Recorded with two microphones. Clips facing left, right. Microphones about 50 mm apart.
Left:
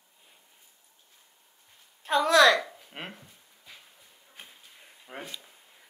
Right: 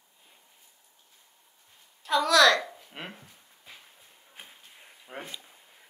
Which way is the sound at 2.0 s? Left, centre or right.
Left.